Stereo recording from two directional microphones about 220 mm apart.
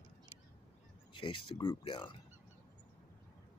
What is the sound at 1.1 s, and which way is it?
Speech, 20° left (ahead or behind).